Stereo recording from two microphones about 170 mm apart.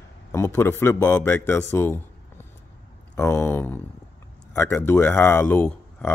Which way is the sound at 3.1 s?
15° left (ahead or behind).